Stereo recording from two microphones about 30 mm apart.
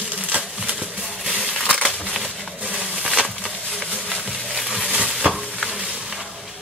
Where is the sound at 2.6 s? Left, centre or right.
Right.